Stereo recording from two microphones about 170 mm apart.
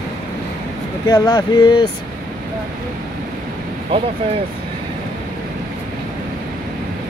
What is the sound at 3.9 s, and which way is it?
Speech, 30° right (ahead or behind).